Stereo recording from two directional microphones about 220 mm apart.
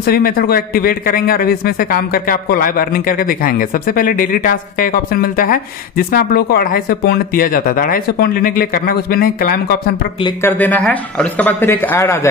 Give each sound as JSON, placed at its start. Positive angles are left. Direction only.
{"t": 0.0, "sound": "a man's voice", "side_deg": 45}
{"t": 10.2, "sound": "a man's voice", "side_deg": 10}